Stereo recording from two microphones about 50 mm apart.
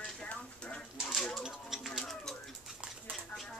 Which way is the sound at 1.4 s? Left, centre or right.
Centre.